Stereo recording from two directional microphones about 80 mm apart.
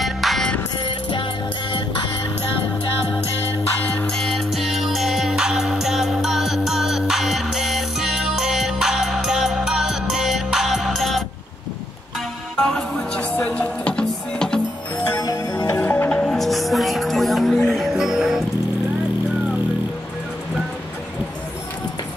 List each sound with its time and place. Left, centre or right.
0.0 s music: centre
0.8 s music: left
3.8 s music: left
4.1 s music: centre
12.5 s music: centre
15.1 s music: left
15.6 s music: left
16.1 s music: centre
16.3 s music: centre